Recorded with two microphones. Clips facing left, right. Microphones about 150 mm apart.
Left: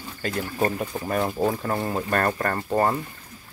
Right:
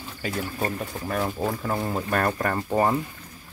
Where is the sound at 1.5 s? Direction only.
Centre (ahead or behind).